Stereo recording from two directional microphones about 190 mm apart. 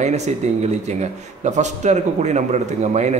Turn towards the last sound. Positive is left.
turn(degrees=-35)  # may be behind; listen again after turning